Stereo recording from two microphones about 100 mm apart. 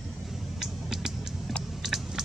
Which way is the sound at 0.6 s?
5° right (ahead or behind).